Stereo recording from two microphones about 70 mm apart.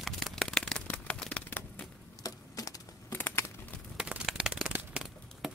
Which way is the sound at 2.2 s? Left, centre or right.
Left.